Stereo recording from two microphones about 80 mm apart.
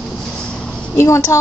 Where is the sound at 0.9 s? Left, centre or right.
Left.